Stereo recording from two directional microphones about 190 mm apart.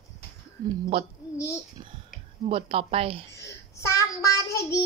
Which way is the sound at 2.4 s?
30° right (ahead or behind).